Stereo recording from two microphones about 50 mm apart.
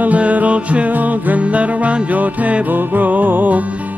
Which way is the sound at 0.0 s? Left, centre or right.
Right.